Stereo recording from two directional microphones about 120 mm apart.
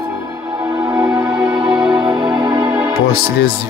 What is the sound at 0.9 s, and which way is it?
Music, 25° right (ahead or behind).